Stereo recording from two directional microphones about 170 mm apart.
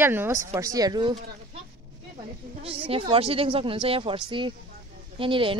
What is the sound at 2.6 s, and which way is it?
Speech, 35° right (ahead or behind).